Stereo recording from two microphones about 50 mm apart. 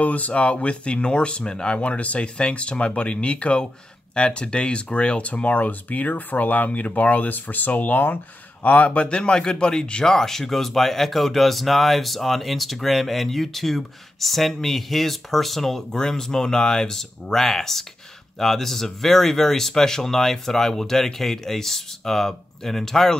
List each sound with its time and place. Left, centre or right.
0.0 s speech: left
8.6 s a man's voice: left; by 23.1 s centre